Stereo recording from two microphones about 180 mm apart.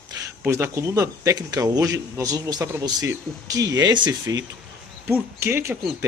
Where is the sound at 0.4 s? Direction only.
15° right (ahead or behind).